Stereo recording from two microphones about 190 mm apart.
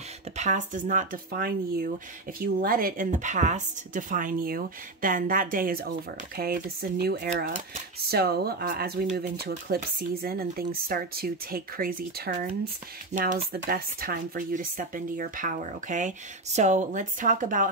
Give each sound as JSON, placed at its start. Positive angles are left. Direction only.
{"t": 0.4, "sound": "speech", "side_deg": -40}